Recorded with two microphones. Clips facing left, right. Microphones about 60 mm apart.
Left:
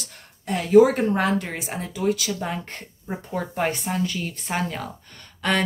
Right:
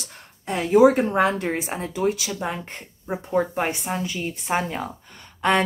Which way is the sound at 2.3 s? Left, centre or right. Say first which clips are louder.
Right 1 dB; centre.